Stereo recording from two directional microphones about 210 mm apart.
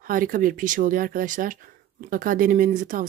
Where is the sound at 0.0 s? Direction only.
40° right (ahead or behind).